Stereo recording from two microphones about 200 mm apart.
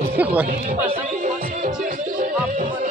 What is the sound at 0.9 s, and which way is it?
Music, 35° right (ahead or behind).